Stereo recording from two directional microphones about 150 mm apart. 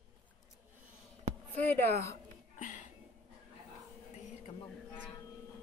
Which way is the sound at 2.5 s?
55° left (ahead or behind).